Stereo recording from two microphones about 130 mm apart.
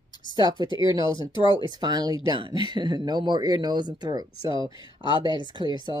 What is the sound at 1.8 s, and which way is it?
Speech, 30° right (ahead or behind).